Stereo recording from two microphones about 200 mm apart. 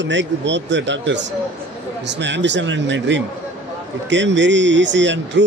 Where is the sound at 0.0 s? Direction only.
65° right (ahead or behind).